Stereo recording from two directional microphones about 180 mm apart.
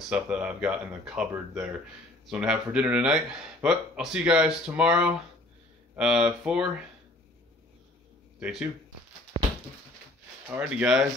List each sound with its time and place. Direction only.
0.1 s speech: 5° right (ahead or behind)
8.4 s speech: 5° right (ahead or behind)
10.5 s speech: 5° right (ahead or behind)